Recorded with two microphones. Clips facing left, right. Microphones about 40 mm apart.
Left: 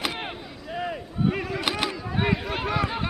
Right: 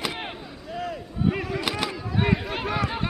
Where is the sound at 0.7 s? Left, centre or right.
Centre.